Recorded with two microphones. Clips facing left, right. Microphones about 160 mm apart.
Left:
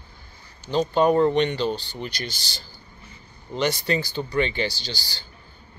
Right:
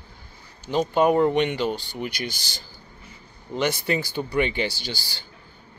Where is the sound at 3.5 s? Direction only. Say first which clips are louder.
Even; 10° right (ahead or behind).